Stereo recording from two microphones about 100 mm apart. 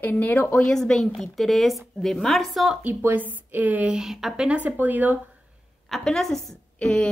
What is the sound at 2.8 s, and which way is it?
A woman's voice, 15° right (ahead or behind).